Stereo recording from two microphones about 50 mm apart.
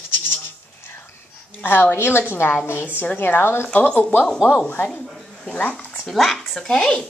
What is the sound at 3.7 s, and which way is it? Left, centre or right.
Speech, left.